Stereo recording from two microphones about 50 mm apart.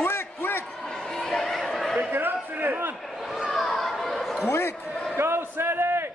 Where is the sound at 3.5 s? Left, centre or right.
Centre.